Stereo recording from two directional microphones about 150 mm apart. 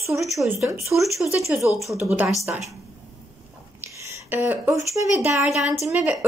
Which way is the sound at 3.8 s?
15° right (ahead or behind).